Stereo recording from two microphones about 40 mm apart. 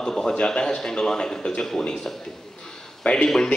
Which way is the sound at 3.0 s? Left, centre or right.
Left.